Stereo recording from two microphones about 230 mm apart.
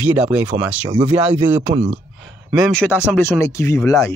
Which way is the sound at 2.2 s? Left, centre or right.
Centre.